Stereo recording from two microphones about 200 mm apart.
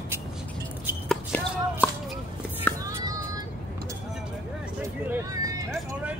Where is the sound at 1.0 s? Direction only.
10° left (ahead or behind).